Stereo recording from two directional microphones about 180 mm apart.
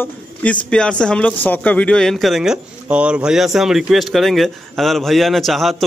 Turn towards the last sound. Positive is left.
turn(degrees=0)  # may be behind; listen again after turning